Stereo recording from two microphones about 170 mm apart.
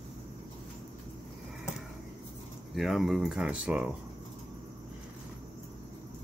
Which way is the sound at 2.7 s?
Centre (ahead or behind).